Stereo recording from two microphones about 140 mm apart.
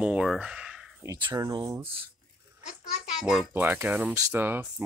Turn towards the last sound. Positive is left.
turn(degrees=-15)  # may be behind; listen again after turning